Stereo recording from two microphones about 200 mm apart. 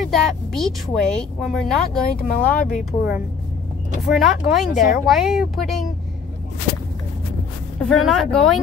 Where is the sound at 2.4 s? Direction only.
5° left (ahead or behind).